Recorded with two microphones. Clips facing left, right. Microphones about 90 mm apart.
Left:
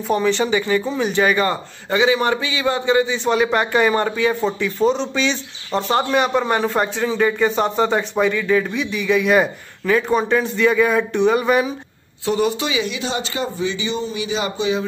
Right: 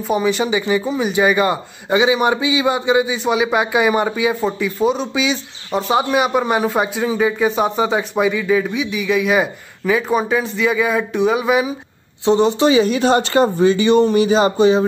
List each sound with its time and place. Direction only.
0.1 s a man's voice: 10° right (ahead or behind)
12.3 s speech: 30° right (ahead or behind)